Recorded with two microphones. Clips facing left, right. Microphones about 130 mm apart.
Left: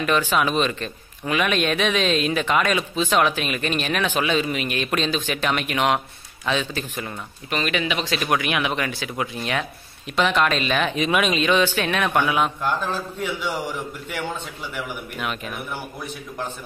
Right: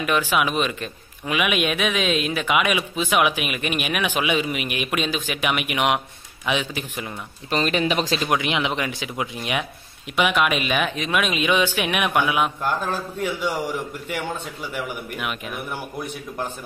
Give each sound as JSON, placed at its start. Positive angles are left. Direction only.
{"t": 0.0, "sound": "a man's voice", "side_deg": -10}
{"t": 7.5, "sound": "speech", "side_deg": -35}
{"t": 8.2, "sound": "a man's voice", "side_deg": -20}